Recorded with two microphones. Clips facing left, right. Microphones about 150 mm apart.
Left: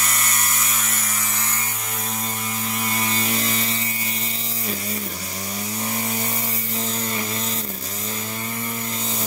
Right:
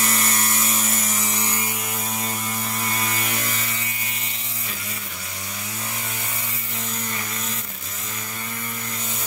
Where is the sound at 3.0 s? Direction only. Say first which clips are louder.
Left 3 dB; 25° left (ahead or behind).